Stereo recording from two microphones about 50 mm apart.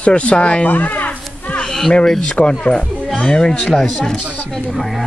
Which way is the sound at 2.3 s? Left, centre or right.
Left.